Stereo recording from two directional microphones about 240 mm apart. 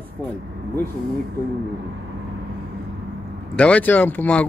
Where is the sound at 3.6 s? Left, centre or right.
Centre.